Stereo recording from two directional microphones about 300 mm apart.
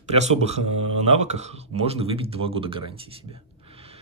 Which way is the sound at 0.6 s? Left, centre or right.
Right.